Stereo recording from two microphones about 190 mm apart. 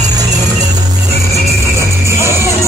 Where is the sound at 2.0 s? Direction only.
15° right (ahead or behind).